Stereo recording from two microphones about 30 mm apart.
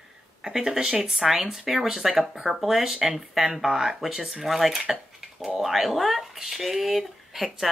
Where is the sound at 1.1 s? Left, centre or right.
Centre.